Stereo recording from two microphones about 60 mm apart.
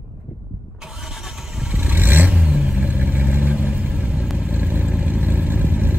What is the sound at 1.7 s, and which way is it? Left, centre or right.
Vehicle, right.